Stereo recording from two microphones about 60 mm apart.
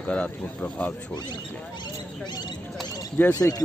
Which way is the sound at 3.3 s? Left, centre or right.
Left.